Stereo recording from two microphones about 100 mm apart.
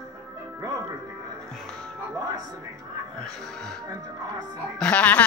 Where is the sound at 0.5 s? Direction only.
35° right (ahead or behind).